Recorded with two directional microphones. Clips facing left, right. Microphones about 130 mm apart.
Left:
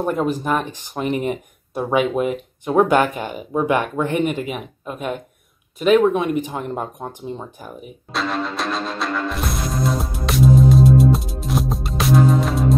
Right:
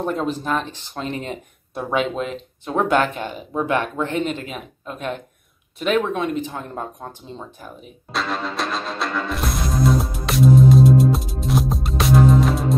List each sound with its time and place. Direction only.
0.2 s speech: 15° left (ahead or behind)
8.1 s music: centre (ahead or behind)